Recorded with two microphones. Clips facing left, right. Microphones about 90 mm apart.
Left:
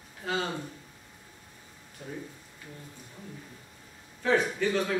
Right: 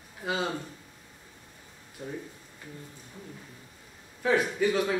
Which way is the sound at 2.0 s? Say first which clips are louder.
Right 3 dB; 20° right (ahead or behind).